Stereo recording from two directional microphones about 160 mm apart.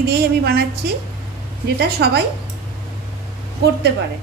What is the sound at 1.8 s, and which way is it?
Speech, 80° right.